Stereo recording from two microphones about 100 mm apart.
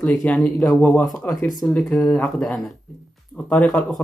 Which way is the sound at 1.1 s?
15° left (ahead or behind).